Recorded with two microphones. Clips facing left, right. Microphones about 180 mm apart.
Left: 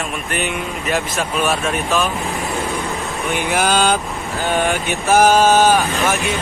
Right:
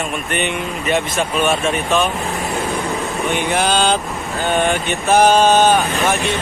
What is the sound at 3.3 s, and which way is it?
A man's voice, 5° left (ahead or behind).